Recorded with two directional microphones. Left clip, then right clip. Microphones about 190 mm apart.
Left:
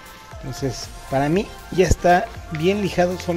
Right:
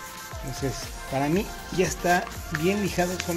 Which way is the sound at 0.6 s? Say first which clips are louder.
Left 4 dB; 30° left (ahead or behind).